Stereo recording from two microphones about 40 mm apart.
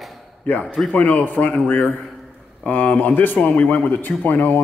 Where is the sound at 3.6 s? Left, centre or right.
Left.